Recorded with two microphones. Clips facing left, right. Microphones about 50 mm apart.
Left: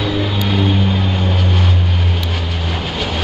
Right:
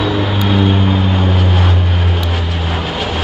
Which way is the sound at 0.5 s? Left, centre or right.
Right.